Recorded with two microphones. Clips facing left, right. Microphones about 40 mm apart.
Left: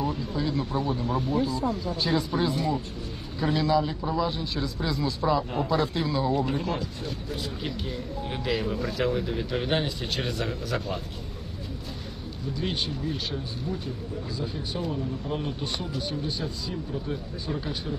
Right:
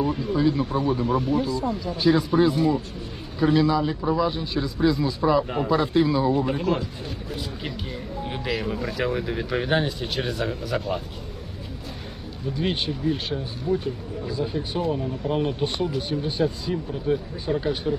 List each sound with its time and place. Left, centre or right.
0.0 s speech: centre
1.0 s speech: right
2.0 s speech: centre
12.6 s speech: right